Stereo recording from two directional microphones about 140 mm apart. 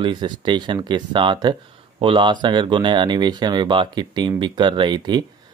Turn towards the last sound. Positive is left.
turn(degrees=-30)  # may be behind; listen again after turning